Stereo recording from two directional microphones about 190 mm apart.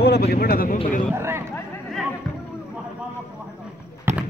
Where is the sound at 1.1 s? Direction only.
15° right (ahead or behind).